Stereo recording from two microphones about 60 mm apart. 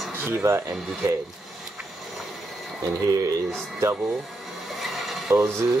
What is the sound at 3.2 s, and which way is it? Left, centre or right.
Speech, right.